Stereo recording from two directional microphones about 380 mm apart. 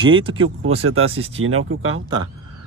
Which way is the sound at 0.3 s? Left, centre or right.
Right.